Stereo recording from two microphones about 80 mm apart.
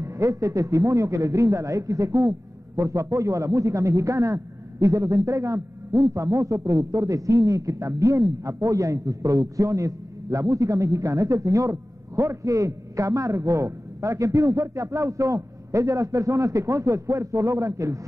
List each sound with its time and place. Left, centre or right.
0.0 s a man's voice: right
5.9 s a man's voice: right
6.1 s speech: right
6.6 s a man's voice: right
6.9 s a man's voice: right